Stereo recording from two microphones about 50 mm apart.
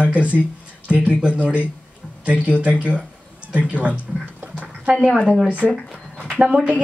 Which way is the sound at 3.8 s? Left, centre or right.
Right.